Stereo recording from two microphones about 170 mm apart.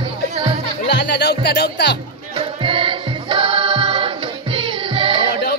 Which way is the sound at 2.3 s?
30° right (ahead or behind).